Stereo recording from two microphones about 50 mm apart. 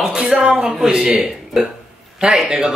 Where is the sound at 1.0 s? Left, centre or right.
Centre.